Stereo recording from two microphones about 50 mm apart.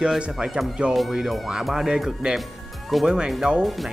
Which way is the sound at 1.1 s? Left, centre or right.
Centre.